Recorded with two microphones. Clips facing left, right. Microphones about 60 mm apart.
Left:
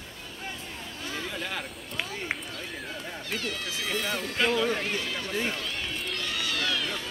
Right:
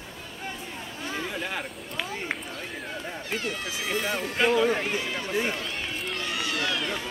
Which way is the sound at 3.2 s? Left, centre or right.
Right.